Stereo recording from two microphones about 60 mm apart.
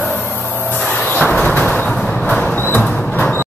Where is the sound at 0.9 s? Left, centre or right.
Left.